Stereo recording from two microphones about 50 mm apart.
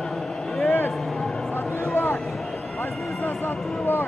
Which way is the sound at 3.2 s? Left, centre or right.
Left.